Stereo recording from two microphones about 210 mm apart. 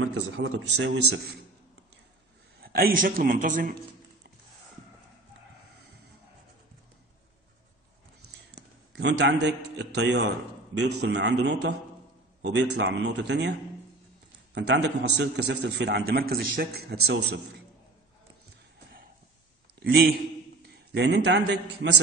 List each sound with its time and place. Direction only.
0.4 s a man's voice: 60° right (ahead or behind)
2.6 s a man's voice: 45° right (ahead or behind)
8.9 s a man's voice: 55° right (ahead or behind)
14.5 s a man's voice: 55° right (ahead or behind)
19.8 s a man's voice: 50° right (ahead or behind)